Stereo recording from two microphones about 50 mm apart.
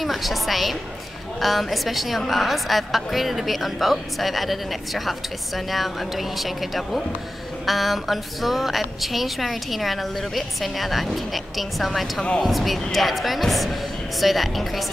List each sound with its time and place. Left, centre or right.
0.0 s a woman's voice: centre
12.2 s speech: centre
12.4 s a woman's voice: centre